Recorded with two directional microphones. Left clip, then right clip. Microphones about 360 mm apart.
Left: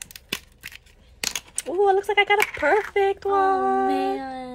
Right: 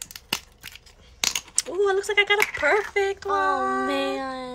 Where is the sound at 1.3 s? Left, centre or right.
Centre.